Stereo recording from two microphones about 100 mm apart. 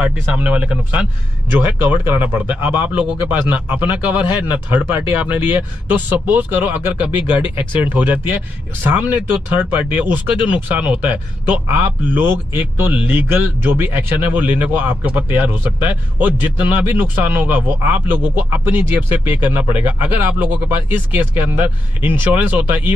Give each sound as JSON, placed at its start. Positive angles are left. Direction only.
{"t": 0.0, "sound": "speech", "side_deg": -10}